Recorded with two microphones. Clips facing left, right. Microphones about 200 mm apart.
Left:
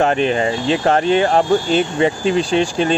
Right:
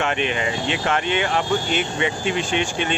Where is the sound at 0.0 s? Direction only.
35° left (ahead or behind).